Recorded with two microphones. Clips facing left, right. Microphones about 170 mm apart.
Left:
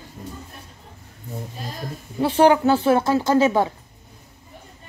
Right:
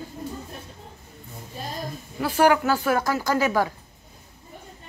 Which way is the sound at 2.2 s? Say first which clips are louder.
Left 4 dB; 30° left (ahead or behind).